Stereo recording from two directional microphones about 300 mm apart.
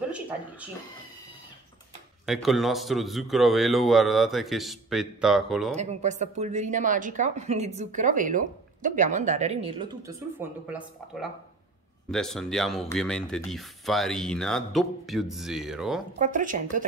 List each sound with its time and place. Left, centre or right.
2.2 s speech: centre
5.8 s speech: right
12.1 s speech: centre
16.2 s speech: right